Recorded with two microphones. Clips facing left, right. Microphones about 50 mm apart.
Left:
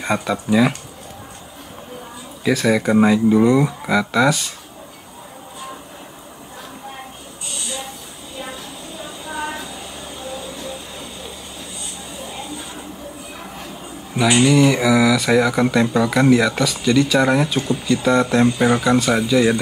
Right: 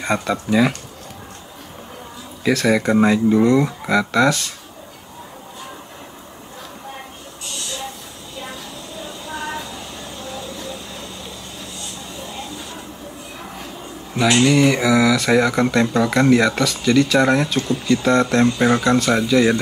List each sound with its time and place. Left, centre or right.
0.0 s speech: centre
2.5 s speech: centre
7.5 s train: centre
10.1 s vehicle: centre
14.1 s speech: centre